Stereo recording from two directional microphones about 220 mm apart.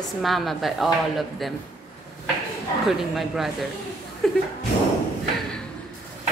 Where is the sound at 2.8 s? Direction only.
Centre (ahead or behind).